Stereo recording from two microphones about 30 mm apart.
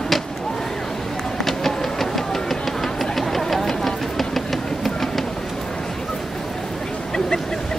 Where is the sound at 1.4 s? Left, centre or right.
Centre.